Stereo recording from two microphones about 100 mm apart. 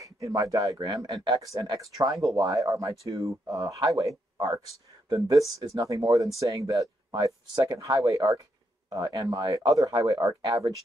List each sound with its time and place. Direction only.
0.0 s speech: 35° right (ahead or behind)